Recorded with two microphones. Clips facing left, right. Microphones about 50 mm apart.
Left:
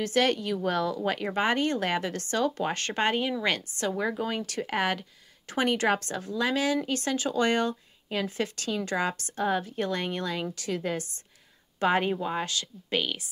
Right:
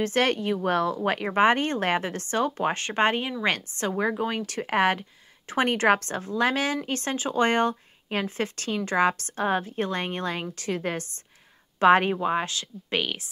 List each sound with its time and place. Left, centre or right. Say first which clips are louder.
0.0 s a woman's voice: right 2 dB; right
13.0 s a woman's voice: right 2 dB; right